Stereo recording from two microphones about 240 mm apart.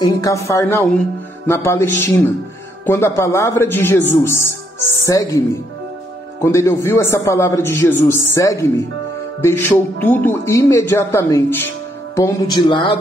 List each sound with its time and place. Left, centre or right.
0.0 s a man's voice: centre
6.4 s a man's voice: centre